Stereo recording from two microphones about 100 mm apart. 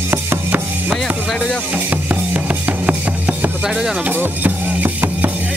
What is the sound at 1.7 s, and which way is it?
Drum, 15° right (ahead or behind).